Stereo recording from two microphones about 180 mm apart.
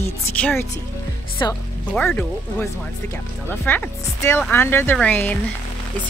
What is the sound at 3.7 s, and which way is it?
Speech, 10° left (ahead or behind).